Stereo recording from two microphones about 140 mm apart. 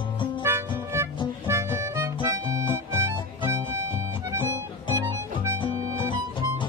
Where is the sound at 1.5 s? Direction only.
20° right (ahead or behind).